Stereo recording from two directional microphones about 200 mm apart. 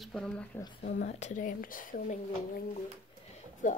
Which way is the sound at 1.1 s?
35° left (ahead or behind).